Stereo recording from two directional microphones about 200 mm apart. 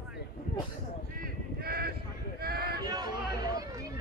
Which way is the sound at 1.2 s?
50° right (ahead or behind).